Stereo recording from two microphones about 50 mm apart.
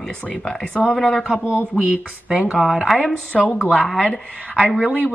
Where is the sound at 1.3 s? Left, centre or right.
Right.